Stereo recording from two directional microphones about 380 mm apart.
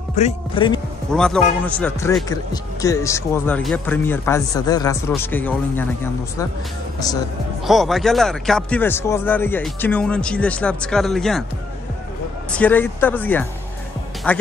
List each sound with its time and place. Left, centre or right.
0.1 s speech: centre
1.1 s speech: centre
7.0 s speech: centre
12.5 s speech: centre